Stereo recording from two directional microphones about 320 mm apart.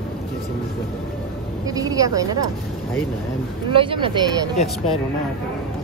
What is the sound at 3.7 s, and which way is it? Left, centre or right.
Speech, centre.